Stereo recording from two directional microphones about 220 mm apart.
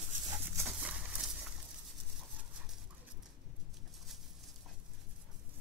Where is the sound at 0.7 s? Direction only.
5° right (ahead or behind).